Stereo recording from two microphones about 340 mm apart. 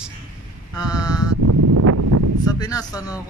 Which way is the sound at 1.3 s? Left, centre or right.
Right.